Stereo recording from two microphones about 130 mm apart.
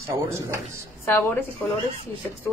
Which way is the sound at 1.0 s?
10° left (ahead or behind).